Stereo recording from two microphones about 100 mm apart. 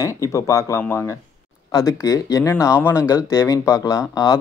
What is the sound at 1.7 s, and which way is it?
Speech, 35° left (ahead or behind).